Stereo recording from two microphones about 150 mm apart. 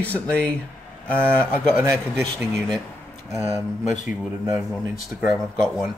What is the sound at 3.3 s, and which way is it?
Speech, 20° right (ahead or behind).